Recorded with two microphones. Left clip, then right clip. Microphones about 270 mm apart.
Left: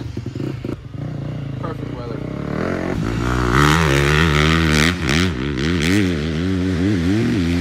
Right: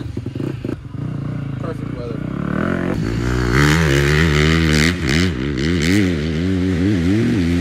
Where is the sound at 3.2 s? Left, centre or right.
Centre.